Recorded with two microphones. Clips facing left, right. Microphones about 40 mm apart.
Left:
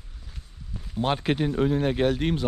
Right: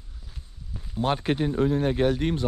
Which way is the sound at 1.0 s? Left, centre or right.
Left.